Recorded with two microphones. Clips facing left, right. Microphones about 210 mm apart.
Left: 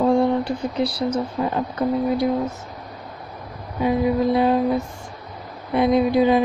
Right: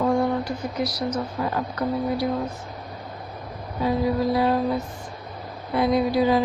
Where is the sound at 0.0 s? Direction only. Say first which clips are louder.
Left 4 dB; 30° left (ahead or behind).